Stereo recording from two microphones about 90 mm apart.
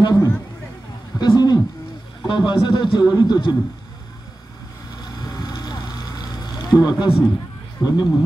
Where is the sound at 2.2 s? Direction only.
60° left (ahead or behind).